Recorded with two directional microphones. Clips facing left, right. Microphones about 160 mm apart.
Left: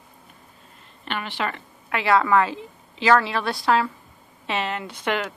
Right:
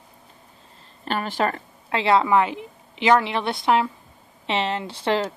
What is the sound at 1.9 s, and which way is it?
A woman's voice, 25° right (ahead or behind).